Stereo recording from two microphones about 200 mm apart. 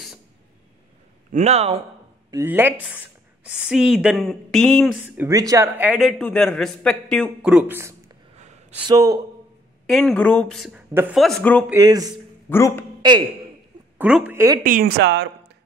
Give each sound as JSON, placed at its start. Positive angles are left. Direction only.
{"t": 1.3, "sound": "speech", "side_deg": -35}
{"t": 2.3, "sound": "a man's voice", "side_deg": -10}
{"t": 5.1, "sound": "a man's voice", "side_deg": -15}
{"t": 8.4, "sound": "a sound", "side_deg": -35}
{"t": 8.8, "sound": "speech", "side_deg": -15}
{"t": 9.8, "sound": "a man's voice", "side_deg": 0}
{"t": 11.2, "sound": "a man's voice", "side_deg": 5}
{"t": 11.7, "sound": "speech", "side_deg": -20}
{"t": 12.4, "sound": "a man's voice", "side_deg": 10}
{"t": 13.0, "sound": "speech", "side_deg": -20}
{"t": 13.9, "sound": "a woman's voice", "side_deg": -5}
{"t": 14.6, "sound": "speech", "side_deg": -45}